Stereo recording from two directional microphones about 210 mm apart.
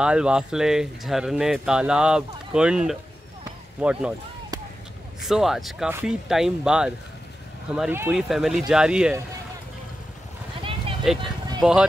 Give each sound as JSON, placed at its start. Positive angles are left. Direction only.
{"t": 0.0, "sound": "speech", "side_deg": -5}
{"t": 5.2, "sound": "speech", "side_deg": 0}
{"t": 10.6, "sound": "vehicle", "side_deg": -25}
{"t": 11.6, "sound": "speech", "side_deg": -5}